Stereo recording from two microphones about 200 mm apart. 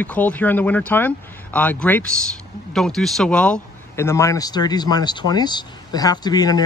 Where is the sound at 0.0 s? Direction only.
10° left (ahead or behind).